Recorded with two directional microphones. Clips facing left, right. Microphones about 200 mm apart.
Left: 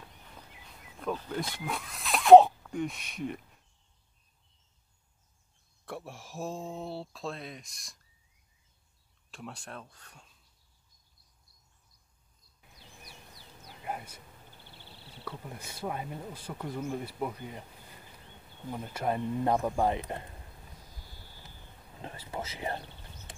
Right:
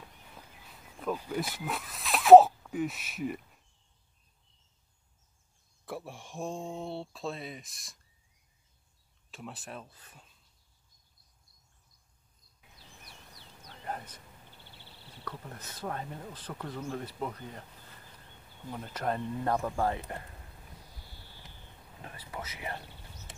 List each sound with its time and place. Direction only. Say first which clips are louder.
0.9 s speech: right 1 dB; 5° right (ahead or behind)
5.9 s speech: right 1 dB; centre (ahead or behind)
9.3 s speech: even; 5° right (ahead or behind)
13.7 s a sound: left 1 dB; 10° left (ahead or behind)
15.2 s speech: left 1 dB; 10° left (ahead or behind)
22.0 s speech: left 4 dB; 30° left (ahead or behind)